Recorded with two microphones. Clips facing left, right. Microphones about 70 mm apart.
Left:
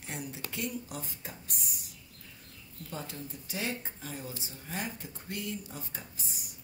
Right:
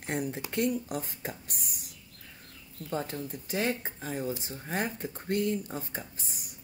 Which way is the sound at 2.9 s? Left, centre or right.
Right.